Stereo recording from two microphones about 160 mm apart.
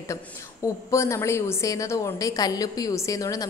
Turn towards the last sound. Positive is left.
turn(degrees=20)  # may be behind; listen again after turning